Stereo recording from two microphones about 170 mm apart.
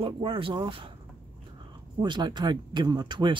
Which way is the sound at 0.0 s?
30° right (ahead or behind).